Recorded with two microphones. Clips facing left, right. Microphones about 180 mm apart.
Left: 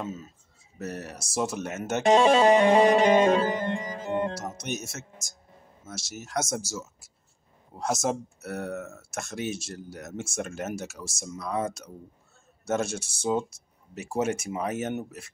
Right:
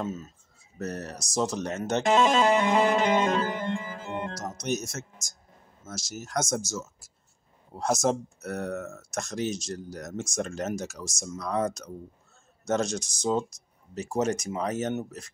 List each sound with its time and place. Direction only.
0.7 s speech: 5° left (ahead or behind)
2.0 s speech: 15° left (ahead or behind)
3.3 s music: 20° left (ahead or behind)
4.4 s speech: 5° left (ahead or behind)
5.9 s speech: 5° left (ahead or behind)